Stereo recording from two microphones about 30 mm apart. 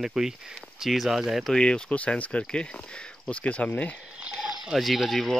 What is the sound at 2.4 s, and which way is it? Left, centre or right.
Speech, left.